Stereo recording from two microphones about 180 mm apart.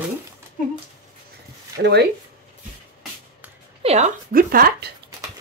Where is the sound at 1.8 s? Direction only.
65° right (ahead or behind).